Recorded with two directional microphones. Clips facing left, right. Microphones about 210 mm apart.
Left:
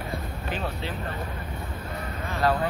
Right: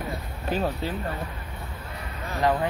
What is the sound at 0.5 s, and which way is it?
Speech, 40° right (ahead or behind).